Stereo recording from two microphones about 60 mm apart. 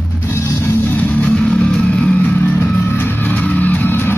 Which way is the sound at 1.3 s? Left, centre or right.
Centre.